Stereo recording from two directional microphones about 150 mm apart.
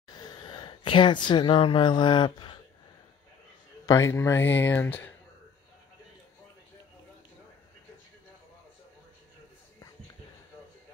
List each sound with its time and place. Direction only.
0.1 s speech: 25° left (ahead or behind)
3.8 s speech: 20° left (ahead or behind)